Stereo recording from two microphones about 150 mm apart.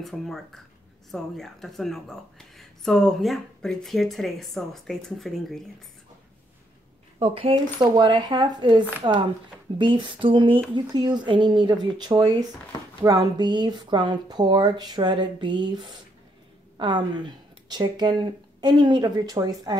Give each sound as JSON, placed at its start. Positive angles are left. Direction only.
{"t": 0.0, "sound": "speech", "side_deg": 0}
{"t": 7.2, "sound": "speech", "side_deg": -35}
{"t": 16.7, "sound": "speech", "side_deg": -30}